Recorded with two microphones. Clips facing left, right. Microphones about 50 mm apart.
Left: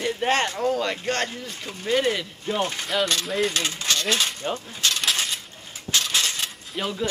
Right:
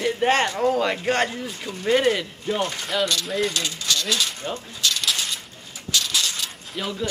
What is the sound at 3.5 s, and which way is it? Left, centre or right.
Speech, left.